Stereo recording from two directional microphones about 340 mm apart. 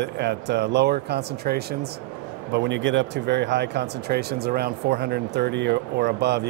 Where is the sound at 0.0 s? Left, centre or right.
Right.